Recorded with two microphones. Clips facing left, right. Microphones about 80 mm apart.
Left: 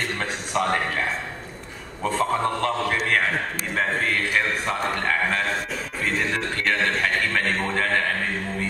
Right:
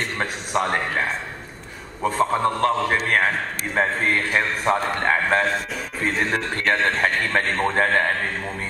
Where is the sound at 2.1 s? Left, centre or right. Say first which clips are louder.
Right 2 dB; right.